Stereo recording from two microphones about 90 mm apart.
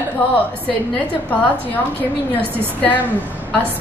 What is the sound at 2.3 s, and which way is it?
Speech, 20° left (ahead or behind).